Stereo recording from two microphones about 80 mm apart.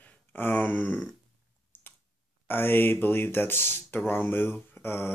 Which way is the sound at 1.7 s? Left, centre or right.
Left.